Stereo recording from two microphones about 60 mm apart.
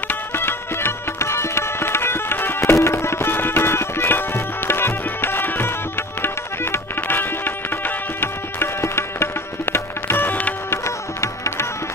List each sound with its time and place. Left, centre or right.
0.1 s music: left
10.7 s music: left